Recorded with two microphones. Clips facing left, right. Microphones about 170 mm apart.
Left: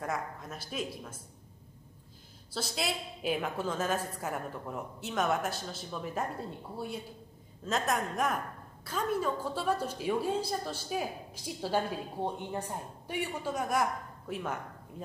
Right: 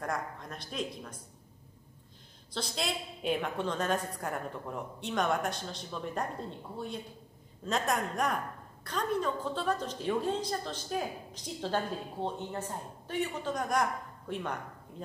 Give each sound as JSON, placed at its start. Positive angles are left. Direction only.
{"t": 0.0, "sound": "a woman's voice", "side_deg": 5}
{"t": 2.5, "sound": "a woman's voice", "side_deg": 5}
{"t": 7.6, "sound": "a woman's voice", "side_deg": 0}